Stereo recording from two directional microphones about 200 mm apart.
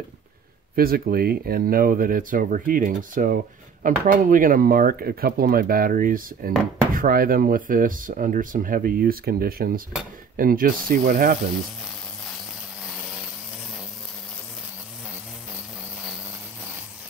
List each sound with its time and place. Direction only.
0.7 s speech: 50° right (ahead or behind)